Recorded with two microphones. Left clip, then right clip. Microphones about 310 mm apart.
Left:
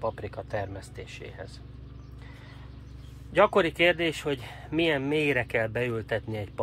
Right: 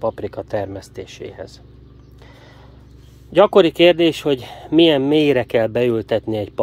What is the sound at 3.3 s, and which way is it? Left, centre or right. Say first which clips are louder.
Speech: right 10 dB; right.